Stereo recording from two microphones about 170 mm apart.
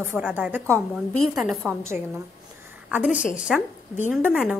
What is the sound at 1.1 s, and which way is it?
Speech, centre (ahead or behind).